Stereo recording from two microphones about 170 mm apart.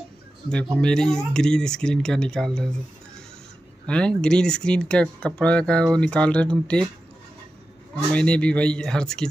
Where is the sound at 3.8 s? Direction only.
5° left (ahead or behind).